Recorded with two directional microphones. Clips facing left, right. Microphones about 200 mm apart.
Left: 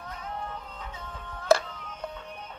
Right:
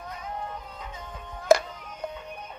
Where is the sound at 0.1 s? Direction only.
10° right (ahead or behind).